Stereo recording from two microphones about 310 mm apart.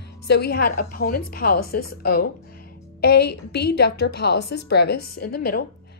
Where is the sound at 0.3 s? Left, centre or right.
Left.